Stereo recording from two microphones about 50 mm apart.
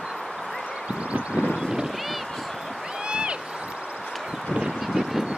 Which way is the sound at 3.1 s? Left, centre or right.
Right.